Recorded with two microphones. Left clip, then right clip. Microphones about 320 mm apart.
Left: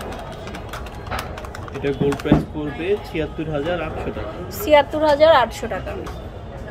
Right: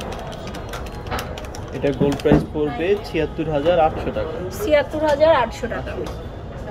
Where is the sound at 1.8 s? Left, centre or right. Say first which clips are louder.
Right 2 dB; centre.